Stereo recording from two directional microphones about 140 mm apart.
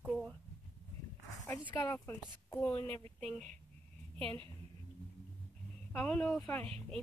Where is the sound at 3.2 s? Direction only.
5° left (ahead or behind).